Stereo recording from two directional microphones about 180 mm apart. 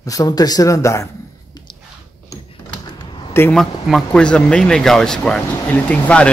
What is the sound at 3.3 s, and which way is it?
Speech, 10° left (ahead or behind).